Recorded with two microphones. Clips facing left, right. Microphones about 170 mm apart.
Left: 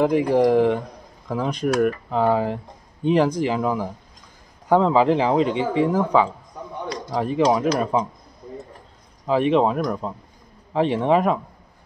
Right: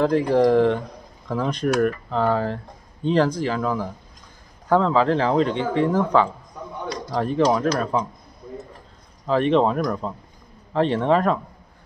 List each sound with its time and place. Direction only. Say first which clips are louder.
0.0 s speech: even; 15° left (ahead or behind)
9.2 s speech: even; 10° left (ahead or behind)